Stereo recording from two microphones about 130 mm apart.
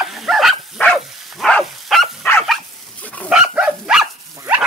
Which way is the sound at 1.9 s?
Centre (ahead or behind).